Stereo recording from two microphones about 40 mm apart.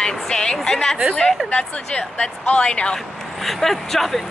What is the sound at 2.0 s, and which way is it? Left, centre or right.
Speech, left.